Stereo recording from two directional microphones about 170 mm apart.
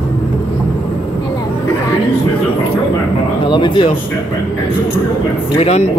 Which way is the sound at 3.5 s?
30° left (ahead or behind).